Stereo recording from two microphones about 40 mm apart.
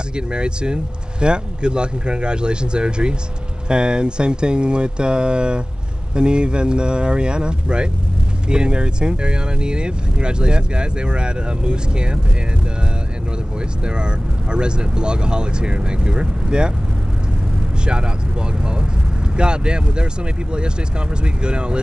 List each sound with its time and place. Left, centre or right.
0.1 s speech: right
13.8 s speech: right
18.6 s speech: right
21.2 s speech: right